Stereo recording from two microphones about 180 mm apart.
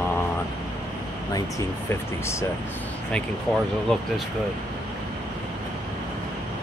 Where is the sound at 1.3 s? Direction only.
15° left (ahead or behind).